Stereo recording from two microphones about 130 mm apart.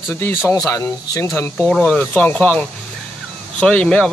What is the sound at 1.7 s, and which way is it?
Speech, 5° left (ahead or behind).